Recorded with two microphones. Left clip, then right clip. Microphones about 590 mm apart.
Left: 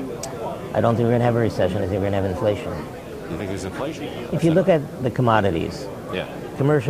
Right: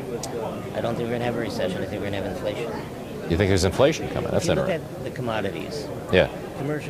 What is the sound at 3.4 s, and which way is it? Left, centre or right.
Speech, right.